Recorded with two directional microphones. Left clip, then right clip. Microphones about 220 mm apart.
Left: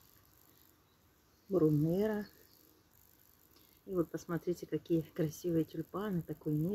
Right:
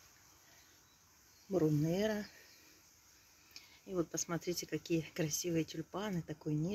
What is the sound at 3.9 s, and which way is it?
Speech, 5° right (ahead or behind).